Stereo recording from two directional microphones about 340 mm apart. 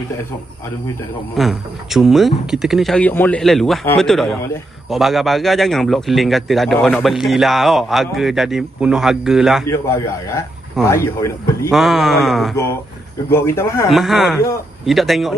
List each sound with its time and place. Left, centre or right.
1.3 s a man's voice: centre